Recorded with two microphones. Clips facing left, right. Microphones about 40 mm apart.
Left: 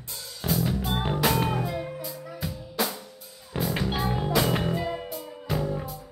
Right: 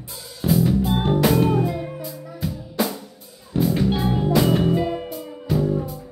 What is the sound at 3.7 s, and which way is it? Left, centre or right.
Music, centre.